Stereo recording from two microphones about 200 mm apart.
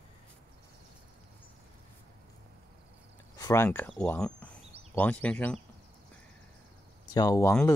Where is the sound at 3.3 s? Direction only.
15° left (ahead or behind).